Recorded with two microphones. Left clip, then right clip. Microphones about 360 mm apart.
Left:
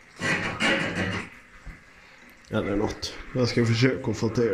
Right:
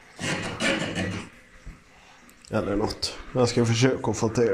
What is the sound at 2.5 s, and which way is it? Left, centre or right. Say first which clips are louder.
Speech: right 1 dB; centre.